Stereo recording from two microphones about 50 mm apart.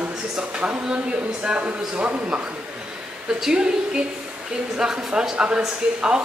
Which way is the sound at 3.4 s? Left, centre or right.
Centre.